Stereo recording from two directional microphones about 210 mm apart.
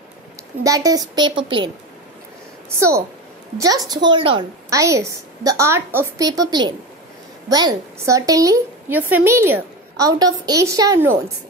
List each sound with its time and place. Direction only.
0.7 s a woman's voice: 15° right (ahead or behind)
3.5 s a woman's voice: 15° right (ahead or behind)